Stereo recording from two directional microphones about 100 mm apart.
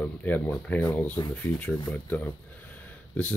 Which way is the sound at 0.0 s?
15° left (ahead or behind).